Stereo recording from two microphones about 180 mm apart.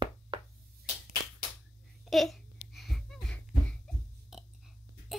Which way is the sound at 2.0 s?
Centre (ahead or behind).